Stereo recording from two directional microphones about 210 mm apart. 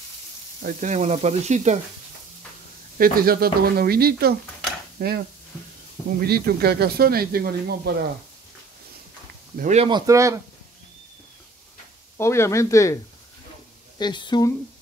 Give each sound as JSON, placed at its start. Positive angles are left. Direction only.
{"t": 0.6, "sound": "sizzle", "side_deg": -40}
{"t": 3.0, "sound": "speech", "side_deg": -45}
{"t": 9.6, "sound": "sizzle", "side_deg": -35}
{"t": 9.8, "sound": "speech", "side_deg": -20}
{"t": 12.2, "sound": "speech", "side_deg": 15}